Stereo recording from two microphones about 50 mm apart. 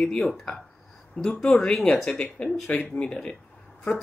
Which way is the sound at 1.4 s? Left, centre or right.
Centre.